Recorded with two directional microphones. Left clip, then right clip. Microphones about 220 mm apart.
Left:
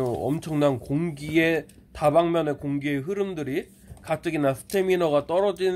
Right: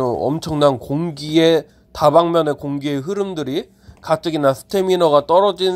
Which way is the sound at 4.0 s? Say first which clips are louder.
Right 8 dB; 25° right (ahead or behind).